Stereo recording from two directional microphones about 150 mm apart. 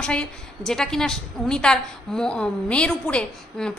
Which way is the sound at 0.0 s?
5° left (ahead or behind).